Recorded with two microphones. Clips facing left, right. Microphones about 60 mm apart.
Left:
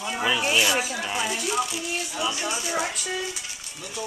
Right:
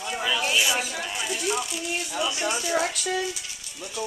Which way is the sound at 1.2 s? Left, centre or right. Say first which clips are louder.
Left 1 dB; centre.